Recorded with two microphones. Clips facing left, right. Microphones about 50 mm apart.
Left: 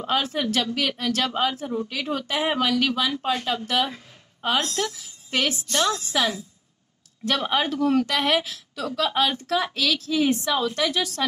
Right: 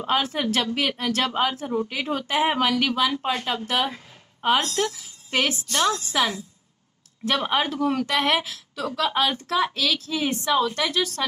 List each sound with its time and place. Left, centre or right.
0.0 s a woman's voice: right
1.3 s a woman's voice: centre
1.6 s a woman's voice: right
5.3 s a woman's voice: right
5.7 s a woman's voice: centre